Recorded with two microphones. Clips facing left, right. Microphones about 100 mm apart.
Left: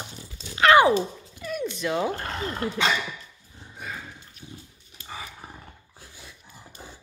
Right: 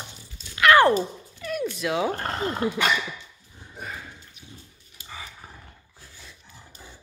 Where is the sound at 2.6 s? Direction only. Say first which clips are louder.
Right 1 dB; 15° right (ahead or behind).